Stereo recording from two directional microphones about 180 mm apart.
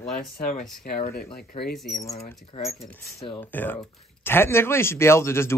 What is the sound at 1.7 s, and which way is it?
Speech, centre (ahead or behind).